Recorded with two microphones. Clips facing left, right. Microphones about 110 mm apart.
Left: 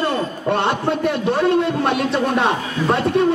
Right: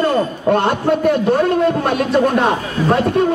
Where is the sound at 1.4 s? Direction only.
45° right (ahead or behind).